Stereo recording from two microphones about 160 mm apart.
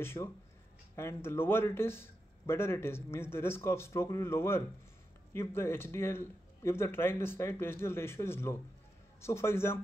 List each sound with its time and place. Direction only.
0.0 s a man's voice: 15° left (ahead or behind)